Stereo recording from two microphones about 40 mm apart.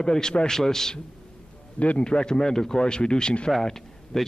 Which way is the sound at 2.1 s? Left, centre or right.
Centre.